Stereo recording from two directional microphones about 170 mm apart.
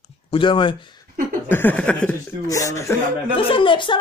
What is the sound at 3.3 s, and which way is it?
Speech, 30° left (ahead or behind).